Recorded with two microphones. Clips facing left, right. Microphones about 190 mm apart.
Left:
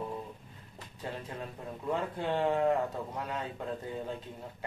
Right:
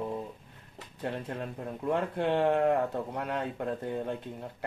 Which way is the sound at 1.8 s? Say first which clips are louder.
Right 4 dB; 65° right (ahead or behind).